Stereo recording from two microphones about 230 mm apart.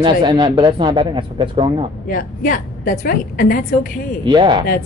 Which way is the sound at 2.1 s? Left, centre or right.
Left.